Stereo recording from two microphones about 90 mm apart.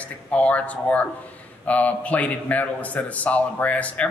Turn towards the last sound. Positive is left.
turn(degrees=15)  # may be behind; listen again after turning